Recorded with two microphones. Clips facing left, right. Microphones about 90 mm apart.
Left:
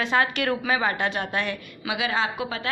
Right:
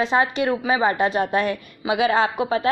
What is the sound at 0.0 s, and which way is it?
A woman's voice, 30° right (ahead or behind).